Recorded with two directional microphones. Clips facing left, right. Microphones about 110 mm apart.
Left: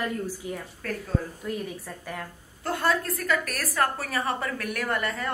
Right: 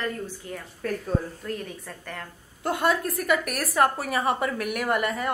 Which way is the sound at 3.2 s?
15° right (ahead or behind).